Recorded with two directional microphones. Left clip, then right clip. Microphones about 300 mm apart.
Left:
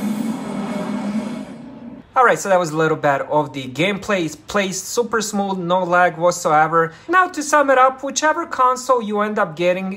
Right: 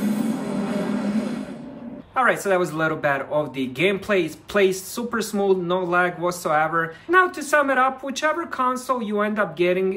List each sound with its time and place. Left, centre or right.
0.0 s music: centre
2.1 s speech: centre